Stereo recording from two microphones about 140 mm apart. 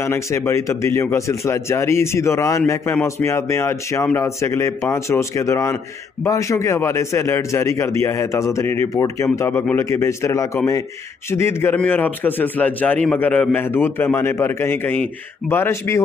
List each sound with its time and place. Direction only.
0.0 s a man's voice: 20° left (ahead or behind)